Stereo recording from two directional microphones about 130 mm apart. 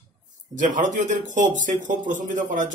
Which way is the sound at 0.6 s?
75° right (ahead or behind).